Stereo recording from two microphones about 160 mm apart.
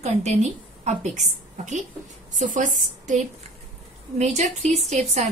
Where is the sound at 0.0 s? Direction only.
45° right (ahead or behind).